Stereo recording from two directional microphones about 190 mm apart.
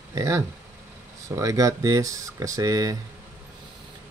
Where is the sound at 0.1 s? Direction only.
15° right (ahead or behind).